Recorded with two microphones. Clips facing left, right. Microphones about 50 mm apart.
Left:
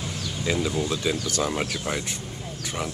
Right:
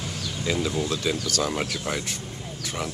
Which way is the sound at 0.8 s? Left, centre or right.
Centre.